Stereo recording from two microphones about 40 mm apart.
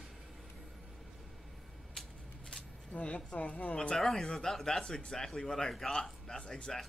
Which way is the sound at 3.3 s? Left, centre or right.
Left.